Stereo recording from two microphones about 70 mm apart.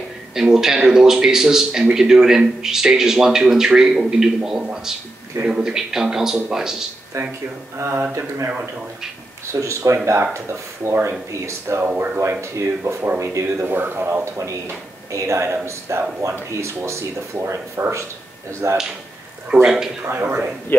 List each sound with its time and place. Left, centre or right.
0.3 s a man's voice: centre
7.1 s speech: right
9.5 s speech: right
10.0 s speech: right
10.3 s speech: right
10.9 s speech: right
13.7 s speech: right
15.0 s speech: right
19.5 s a man's voice: centre
20.1 s speech: right